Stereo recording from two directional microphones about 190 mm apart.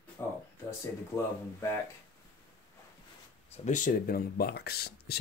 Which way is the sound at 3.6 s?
40° left (ahead or behind).